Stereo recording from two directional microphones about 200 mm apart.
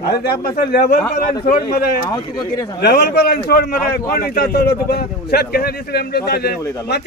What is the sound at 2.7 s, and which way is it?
A man's voice, 55° left (ahead or behind).